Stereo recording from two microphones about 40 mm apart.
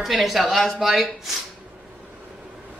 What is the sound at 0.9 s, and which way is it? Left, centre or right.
Speech, centre.